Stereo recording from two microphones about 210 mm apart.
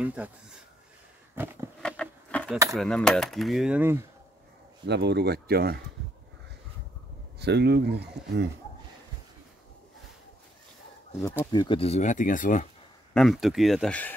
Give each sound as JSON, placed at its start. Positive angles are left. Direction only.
{"t": 0.0, "sound": "speech", "side_deg": -5}
{"t": 1.3, "sound": "a sound", "side_deg": -10}
{"t": 1.8, "sound": "keys jangling", "side_deg": 5}
{"t": 2.7, "sound": "cutlery", "side_deg": 5}
{"t": 4.8, "sound": "speech", "side_deg": -55}
{"t": 7.3, "sound": "speech", "side_deg": -50}
{"t": 11.5, "sound": "speech", "side_deg": 25}
{"t": 13.1, "sound": "cutlery", "side_deg": 0}